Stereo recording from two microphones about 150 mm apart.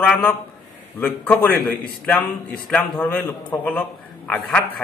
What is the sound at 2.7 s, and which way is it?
A man's voice, 10° left (ahead or behind).